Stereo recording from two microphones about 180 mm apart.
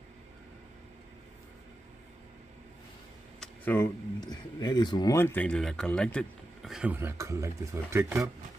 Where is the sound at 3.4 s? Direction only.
10° left (ahead or behind); by 8.3 s 15° right (ahead or behind).